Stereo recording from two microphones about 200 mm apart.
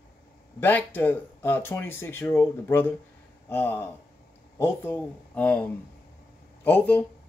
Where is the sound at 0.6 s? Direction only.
10° left (ahead or behind).